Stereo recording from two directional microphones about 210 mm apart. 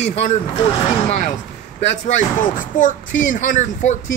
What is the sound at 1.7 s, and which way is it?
Speech, 35° left (ahead or behind).